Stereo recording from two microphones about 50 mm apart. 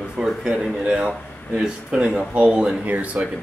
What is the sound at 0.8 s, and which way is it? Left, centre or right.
Speech, right.